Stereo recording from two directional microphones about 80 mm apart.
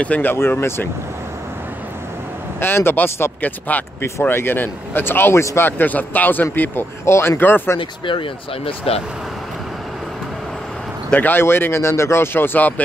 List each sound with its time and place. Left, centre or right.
0.0 s speech: left
2.6 s speech: left
5.7 s speech: left
8.1 s speech: left
11.1 s speech: left